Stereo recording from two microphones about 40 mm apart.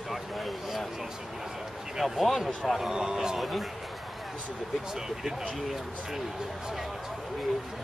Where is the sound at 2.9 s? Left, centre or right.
Centre.